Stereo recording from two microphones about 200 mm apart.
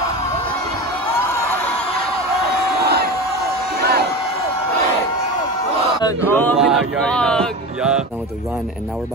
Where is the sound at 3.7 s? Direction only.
50° right (ahead or behind).